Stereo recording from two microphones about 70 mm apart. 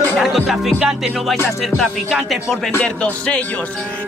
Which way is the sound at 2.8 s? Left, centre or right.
Centre.